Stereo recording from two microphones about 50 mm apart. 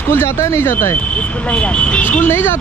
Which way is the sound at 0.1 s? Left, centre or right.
Left.